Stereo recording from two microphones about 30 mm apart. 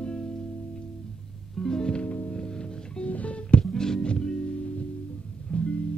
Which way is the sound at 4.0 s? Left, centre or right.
Left.